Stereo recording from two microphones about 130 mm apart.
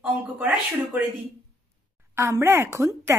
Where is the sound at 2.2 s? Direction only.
20° right (ahead or behind).